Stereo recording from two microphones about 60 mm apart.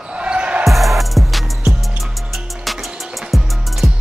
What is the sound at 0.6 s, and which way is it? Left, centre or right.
Music, centre.